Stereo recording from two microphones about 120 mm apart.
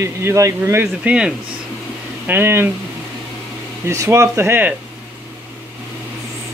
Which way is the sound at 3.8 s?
25° right (ahead or behind).